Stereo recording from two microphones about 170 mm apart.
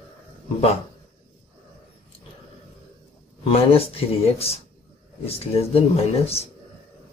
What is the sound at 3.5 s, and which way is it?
Speech, 35° left (ahead or behind).